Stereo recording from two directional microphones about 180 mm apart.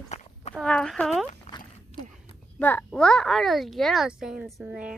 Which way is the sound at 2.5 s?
10° left (ahead or behind).